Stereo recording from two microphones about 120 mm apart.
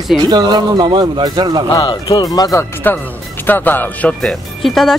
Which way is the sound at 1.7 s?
40° left (ahead or behind).